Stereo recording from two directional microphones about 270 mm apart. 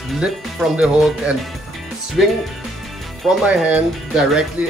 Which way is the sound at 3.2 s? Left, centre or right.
Centre.